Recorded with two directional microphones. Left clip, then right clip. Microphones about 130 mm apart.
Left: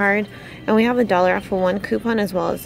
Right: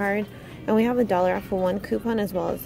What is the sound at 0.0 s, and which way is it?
Speech, 15° left (ahead or behind).